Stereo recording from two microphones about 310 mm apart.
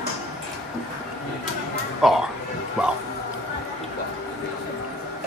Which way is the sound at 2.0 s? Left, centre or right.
Centre.